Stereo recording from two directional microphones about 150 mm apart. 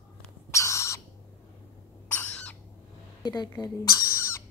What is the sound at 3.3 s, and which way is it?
Speech, 25° left (ahead or behind).